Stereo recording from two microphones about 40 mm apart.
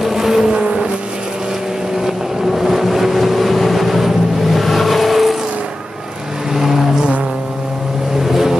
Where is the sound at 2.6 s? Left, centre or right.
Centre.